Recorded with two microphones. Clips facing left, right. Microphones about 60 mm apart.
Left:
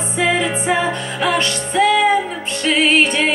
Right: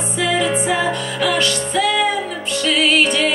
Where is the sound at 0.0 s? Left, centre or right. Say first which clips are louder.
Left 1 dB; left.